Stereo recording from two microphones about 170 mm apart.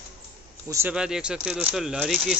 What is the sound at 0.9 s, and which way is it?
Speech, 5° right (ahead or behind).